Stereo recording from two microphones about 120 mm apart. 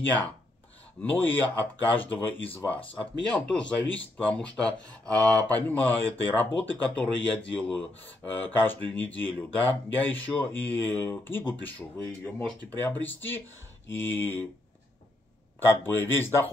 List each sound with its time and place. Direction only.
1.0 s speech: 15° left (ahead or behind)
15.6 s speech: 20° left (ahead or behind)